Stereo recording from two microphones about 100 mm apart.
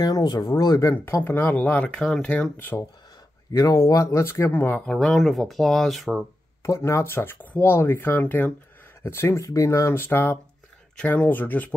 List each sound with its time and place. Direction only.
0.0 s speech: 40° left (ahead or behind)
1.2 s speech: 20° left (ahead or behind)
3.5 s speech: 35° left (ahead or behind)
4.8 s speech: centre (ahead or behind)
6.6 s speech: 30° left (ahead or behind)